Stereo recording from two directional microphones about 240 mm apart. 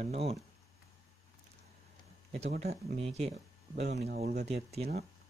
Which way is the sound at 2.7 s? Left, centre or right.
Right.